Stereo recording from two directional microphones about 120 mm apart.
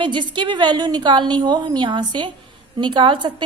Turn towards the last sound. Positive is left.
turn(degrees=-40)  # may be behind; listen again after turning